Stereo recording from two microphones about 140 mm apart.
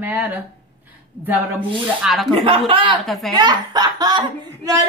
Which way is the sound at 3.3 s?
30° right (ahead or behind).